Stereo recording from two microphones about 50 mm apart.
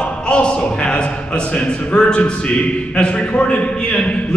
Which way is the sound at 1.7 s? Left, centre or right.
Centre.